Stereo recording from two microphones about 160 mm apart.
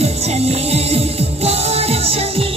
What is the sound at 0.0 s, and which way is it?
Music, 40° right (ahead or behind).